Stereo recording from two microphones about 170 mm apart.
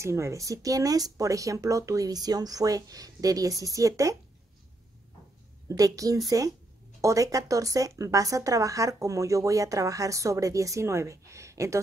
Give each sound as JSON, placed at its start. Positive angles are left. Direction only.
{"t": 0.0, "sound": "speech", "side_deg": -15}
{"t": 5.7, "sound": "speech", "side_deg": -20}